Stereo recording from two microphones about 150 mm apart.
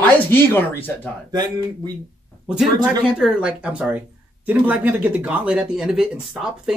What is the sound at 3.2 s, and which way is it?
Speech, 5° right (ahead or behind).